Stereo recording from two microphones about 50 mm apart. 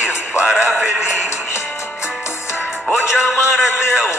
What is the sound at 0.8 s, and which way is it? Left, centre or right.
Music, centre.